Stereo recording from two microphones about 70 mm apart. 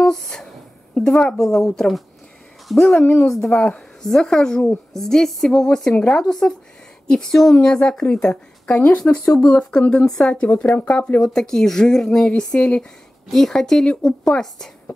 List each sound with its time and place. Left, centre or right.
0.0 s a sound: centre
0.9 s speech: centre
3.0 s a woman's voice: left
3.4 s speech: centre
9.1 s speech: centre